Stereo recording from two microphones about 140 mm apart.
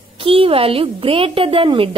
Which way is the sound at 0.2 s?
40° right (ahead or behind).